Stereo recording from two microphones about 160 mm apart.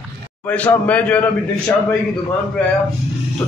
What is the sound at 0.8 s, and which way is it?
Speech, 10° left (ahead or behind).